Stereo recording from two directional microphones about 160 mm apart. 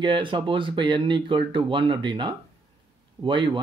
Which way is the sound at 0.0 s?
30° right (ahead or behind).